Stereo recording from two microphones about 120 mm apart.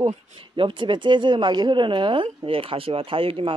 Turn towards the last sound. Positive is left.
turn(degrees=-50)  # may be behind; listen again after turning